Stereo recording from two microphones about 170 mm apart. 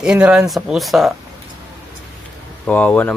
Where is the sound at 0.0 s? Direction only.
5° right (ahead or behind).